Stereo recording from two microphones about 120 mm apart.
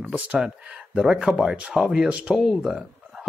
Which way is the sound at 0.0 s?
10° right (ahead or behind).